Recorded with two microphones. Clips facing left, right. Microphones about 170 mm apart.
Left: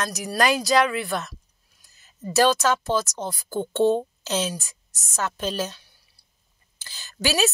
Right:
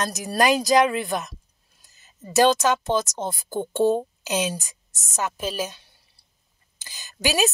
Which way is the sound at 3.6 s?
10° right (ahead or behind).